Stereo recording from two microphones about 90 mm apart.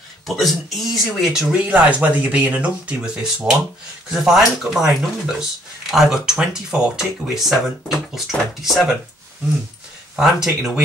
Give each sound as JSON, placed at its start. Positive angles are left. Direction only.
{"t": 0.4, "sound": "speech", "side_deg": 0}
{"t": 1.5, "sound": "speech", "side_deg": -10}
{"t": 10.1, "sound": "speech", "side_deg": -5}